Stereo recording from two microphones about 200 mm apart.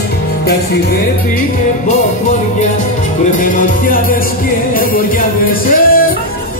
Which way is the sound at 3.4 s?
40° left (ahead or behind).